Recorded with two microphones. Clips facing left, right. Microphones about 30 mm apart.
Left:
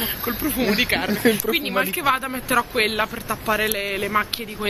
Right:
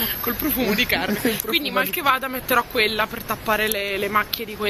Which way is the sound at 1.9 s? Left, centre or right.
Centre.